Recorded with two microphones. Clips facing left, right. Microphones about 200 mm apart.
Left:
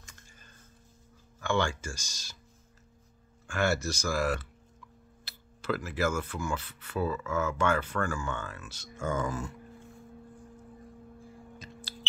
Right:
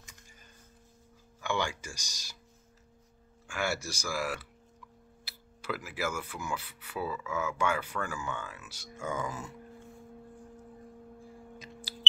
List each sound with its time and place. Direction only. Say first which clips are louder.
1.4 s speech: left 4 dB; 15° right (ahead or behind)
3.4 s speech: left 5 dB; 10° right (ahead or behind)
11.5 s a sound: even; 15° right (ahead or behind)